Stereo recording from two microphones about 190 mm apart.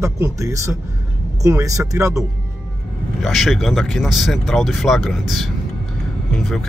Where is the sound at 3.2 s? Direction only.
Centre (ahead or behind).